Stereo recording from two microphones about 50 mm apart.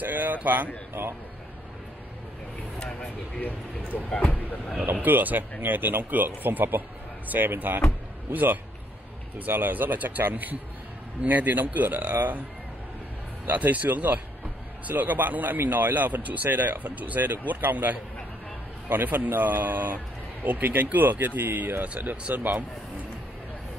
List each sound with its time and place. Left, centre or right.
0.0 s speech: right
3.3 s speech: left
5.0 s speech: right
13.5 s speech: right
21.8 s speech: right
22.3 s speech: right